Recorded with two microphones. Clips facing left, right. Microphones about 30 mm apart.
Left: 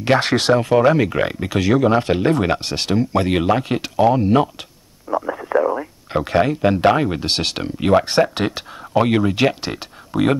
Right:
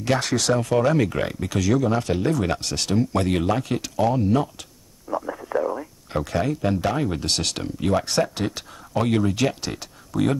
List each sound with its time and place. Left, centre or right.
0.0 s speech: left
5.1 s radio: left
5.4 s a sound: left
7.0 s speech: left